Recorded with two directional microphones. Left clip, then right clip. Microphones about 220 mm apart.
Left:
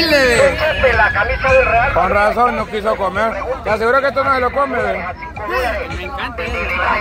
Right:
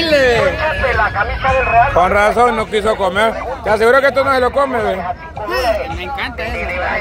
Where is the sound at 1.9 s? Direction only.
15° right (ahead or behind).